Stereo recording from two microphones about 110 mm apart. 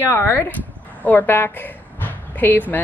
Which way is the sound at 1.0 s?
15° left (ahead or behind).